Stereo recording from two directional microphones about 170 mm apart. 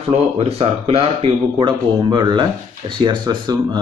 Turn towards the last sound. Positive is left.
turn(degrees=-25)  # may be behind; listen again after turning